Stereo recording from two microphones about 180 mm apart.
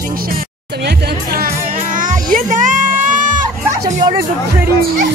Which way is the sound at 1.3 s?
50° right (ahead or behind).